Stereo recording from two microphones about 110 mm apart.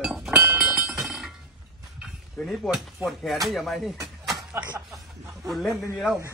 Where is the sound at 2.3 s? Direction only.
5° left (ahead or behind).